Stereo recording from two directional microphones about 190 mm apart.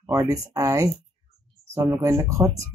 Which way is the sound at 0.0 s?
15° right (ahead or behind).